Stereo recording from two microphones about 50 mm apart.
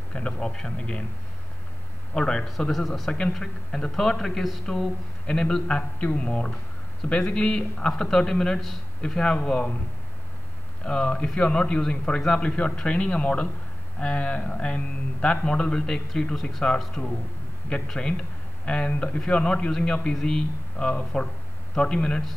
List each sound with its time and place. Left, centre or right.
0.1 s speech: centre
2.1 s a man's voice: centre
4.6 s a man's voice: centre
10.8 s a man's voice: left